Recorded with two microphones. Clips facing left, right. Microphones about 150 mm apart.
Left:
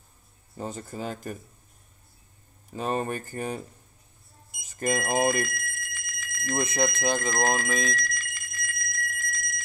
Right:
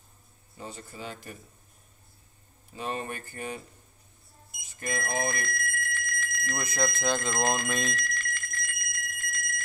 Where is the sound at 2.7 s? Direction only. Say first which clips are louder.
Left 6 dB; 45° left (ahead or behind).